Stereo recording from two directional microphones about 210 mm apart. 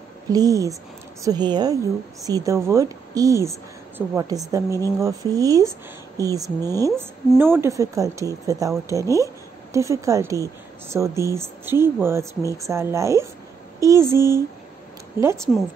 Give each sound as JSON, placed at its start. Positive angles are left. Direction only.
{"t": 0.3, "sound": "speech", "side_deg": -15}